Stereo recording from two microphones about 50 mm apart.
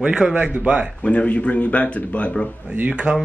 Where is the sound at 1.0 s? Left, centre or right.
Left.